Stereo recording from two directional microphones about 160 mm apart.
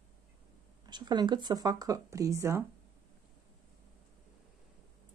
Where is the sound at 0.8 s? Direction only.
25° right (ahead or behind).